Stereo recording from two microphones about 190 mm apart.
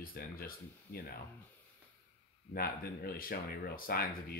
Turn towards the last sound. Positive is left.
turn(degrees=55)  # may be behind; listen again after turning